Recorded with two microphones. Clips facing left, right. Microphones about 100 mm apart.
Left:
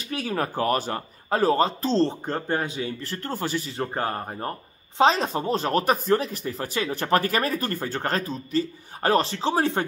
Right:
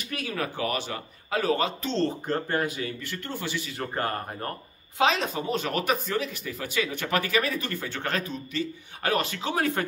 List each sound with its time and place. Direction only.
0.1 s speech: 35° left (ahead or behind)
4.9 s speech: 35° left (ahead or behind)